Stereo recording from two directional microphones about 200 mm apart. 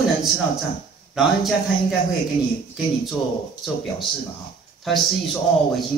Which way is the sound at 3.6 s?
Centre (ahead or behind).